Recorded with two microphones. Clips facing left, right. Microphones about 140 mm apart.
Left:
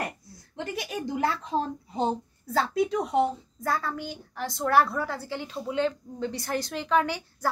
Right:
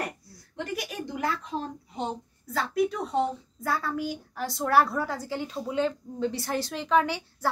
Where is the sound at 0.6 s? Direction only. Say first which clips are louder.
Left 1 dB; 25° left (ahead or behind).